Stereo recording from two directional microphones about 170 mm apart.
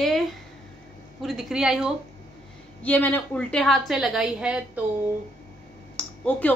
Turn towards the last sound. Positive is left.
turn(degrees=10)  # may be behind; listen again after turning